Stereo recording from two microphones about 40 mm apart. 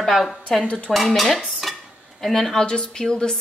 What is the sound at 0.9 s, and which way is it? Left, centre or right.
Speech, centre.